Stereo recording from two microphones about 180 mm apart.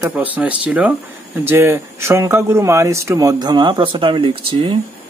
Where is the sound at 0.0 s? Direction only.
10° right (ahead or behind).